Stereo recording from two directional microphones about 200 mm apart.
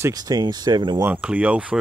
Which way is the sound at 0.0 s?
20° right (ahead or behind).